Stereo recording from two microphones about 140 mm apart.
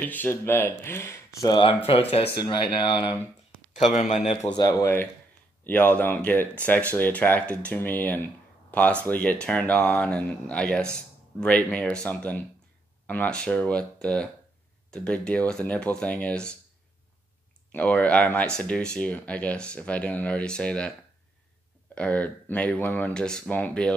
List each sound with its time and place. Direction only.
0.0 s speech: 15° left (ahead or behind)
1.9 s speech: 45° left (ahead or behind)
4.6 s speech: 25° left (ahead or behind); by 16.5 s 10° left (ahead or behind)
17.7 s speech: 10° left (ahead or behind)
21.9 s speech: 10° left (ahead or behind)